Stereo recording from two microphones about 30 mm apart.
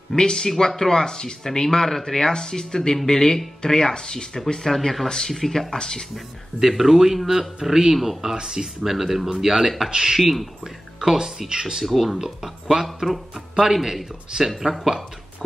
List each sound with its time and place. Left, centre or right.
0.1 s speech: left
4.6 s speech: centre
5.0 s speech: centre
5.3 s speech: centre
5.7 s speech: left
6.7 s speech: centre
9.8 s speech: right
10.1 s speech: centre
11.0 s speech: centre
11.8 s speech: centre
12.2 s speech: centre
12.8 s speech: centre
14.3 s speech: right